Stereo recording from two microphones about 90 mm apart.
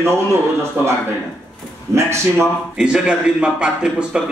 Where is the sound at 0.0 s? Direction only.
30° right (ahead or behind).